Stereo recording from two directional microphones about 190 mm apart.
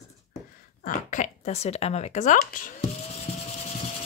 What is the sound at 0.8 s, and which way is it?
Speech, 40° left (ahead or behind).